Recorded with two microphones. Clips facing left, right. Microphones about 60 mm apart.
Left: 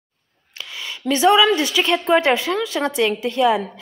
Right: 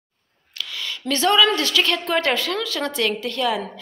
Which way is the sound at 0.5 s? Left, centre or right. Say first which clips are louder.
Right 1 dB; left.